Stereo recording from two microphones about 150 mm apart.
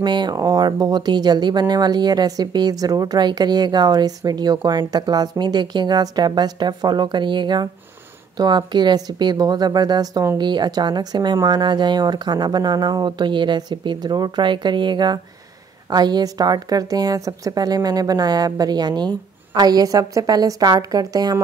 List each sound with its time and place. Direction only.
0.0 s speech: 30° right (ahead or behind)